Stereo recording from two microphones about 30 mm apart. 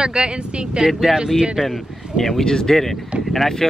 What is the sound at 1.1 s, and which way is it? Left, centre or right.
Speech, centre.